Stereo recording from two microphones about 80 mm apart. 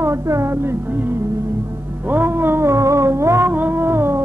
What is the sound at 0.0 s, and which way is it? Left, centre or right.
Speech, right.